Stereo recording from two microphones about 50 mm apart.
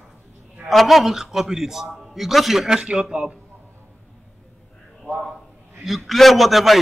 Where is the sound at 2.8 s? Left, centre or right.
Centre.